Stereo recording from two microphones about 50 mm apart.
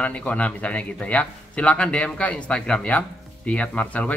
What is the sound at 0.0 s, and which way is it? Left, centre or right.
A man's voice, left.